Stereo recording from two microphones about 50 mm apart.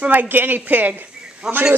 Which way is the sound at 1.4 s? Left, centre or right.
Centre.